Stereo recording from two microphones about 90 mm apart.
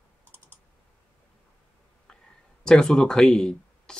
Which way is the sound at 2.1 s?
10° left (ahead or behind).